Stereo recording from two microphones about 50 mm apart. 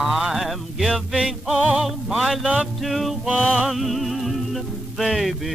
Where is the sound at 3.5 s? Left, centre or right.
Centre.